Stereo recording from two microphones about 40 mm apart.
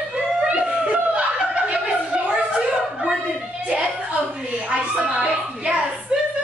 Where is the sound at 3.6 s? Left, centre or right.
Right.